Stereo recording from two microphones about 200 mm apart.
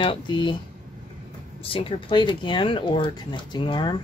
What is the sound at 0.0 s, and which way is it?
Speech, 25° left (ahead or behind).